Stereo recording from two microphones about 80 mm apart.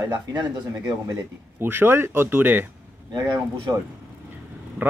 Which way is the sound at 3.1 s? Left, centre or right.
Right.